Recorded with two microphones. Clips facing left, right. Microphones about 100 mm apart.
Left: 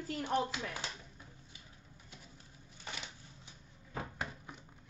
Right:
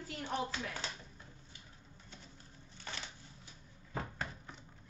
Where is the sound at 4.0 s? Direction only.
10° left (ahead or behind).